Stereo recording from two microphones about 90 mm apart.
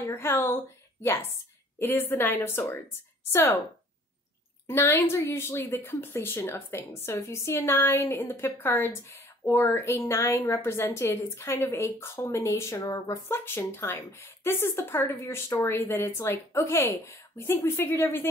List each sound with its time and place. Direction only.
0.0 s a woman's voice: 25° left (ahead or behind)
1.8 s a woman's voice: 25° left (ahead or behind)
4.6 s a woman's voice: 25° left (ahead or behind)
13.3 s a woman's voice: 25° left (ahead or behind)